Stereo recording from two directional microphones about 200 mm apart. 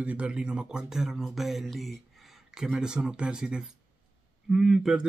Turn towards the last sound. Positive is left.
turn(degrees=-5)  # may be behind; listen again after turning